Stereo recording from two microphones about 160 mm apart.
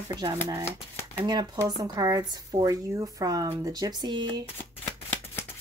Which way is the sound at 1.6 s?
25° right (ahead or behind).